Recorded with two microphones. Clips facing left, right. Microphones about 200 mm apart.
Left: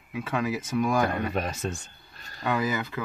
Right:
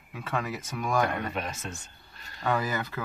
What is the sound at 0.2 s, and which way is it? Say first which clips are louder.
Speech: left 4 dB; 5° left (ahead or behind).